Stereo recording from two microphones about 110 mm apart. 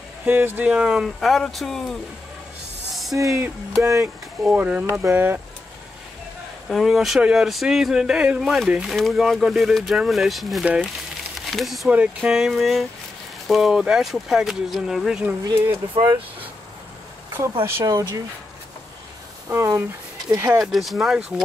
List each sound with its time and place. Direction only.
0.2 s speech: 20° right (ahead or behind); by 2.0 s 5° left (ahead or behind)
3.2 s speech: 30° right (ahead or behind)
4.4 s speech: 10° right (ahead or behind)
6.7 s speech: centre (ahead or behind)
15.4 s speech: 40° right (ahead or behind)
17.8 s speech: 35° right (ahead or behind)
19.5 s speech: 25° right (ahead or behind)
20.5 s speech: 5° right (ahead or behind)